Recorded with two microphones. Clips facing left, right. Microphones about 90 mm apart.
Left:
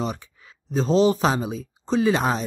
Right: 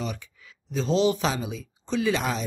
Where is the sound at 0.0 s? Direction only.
35° left (ahead or behind).